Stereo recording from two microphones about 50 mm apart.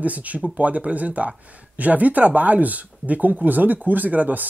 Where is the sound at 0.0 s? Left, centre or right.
Right.